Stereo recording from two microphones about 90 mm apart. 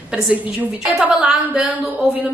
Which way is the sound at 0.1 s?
15° right (ahead or behind).